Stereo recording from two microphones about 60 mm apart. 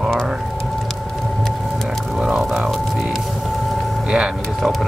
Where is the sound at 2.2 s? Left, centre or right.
Centre.